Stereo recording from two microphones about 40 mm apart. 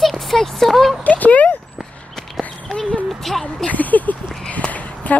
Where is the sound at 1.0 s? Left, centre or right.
Left.